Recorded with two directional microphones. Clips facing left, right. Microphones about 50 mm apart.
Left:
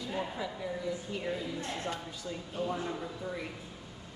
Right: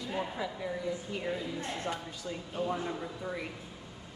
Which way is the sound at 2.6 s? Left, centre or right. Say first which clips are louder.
Right 1 dB; right.